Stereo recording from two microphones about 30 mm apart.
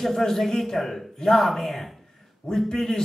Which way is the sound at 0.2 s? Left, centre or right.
Centre.